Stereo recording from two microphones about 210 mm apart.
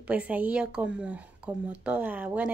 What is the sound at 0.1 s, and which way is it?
A woman's voice, 5° right (ahead or behind).